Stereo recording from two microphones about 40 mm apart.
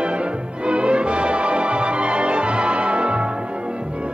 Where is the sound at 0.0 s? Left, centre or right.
Right.